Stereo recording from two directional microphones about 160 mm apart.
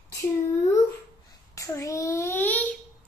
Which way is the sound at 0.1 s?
20° left (ahead or behind).